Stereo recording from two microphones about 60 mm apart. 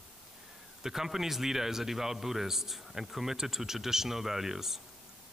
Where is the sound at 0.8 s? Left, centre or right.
Centre.